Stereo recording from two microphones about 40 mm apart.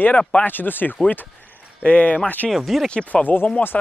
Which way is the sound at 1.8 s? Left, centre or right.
Left.